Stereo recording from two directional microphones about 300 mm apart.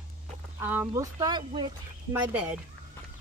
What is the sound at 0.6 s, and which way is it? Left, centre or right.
Speech, centre.